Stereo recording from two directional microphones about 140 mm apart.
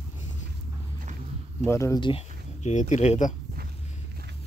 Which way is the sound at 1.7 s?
20° left (ahead or behind).